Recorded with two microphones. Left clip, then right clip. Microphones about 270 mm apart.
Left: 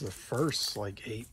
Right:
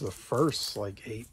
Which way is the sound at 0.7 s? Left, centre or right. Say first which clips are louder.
Right 2 dB; centre.